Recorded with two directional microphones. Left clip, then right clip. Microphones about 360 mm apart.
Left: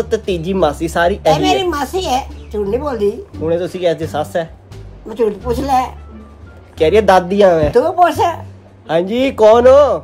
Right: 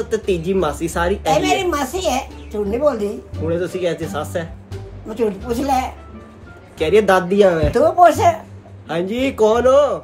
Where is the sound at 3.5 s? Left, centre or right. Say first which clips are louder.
Left 5 dB; left.